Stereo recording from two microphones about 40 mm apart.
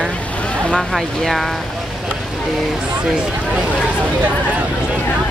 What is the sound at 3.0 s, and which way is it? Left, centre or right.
Speech, right.